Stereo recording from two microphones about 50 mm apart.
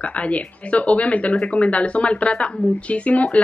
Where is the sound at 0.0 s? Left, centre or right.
Left.